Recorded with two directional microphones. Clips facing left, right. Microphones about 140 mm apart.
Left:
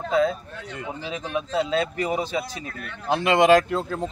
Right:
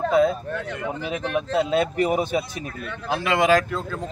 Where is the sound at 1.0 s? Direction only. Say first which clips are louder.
Right 3 dB; 60° right (ahead or behind).